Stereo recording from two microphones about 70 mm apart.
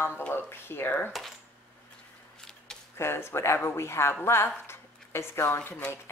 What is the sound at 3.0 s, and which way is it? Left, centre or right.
Speech, left.